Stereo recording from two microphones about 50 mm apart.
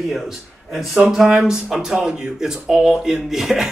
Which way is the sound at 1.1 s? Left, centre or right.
Centre.